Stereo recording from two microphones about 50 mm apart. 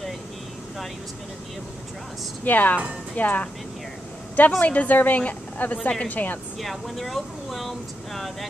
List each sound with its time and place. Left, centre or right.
2.4 s a woman's voice: left
4.6 s a woman's voice: left
6.6 s speech: centre